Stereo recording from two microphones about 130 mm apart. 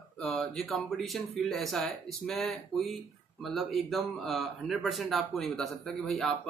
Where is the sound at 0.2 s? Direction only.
5° left (ahead or behind).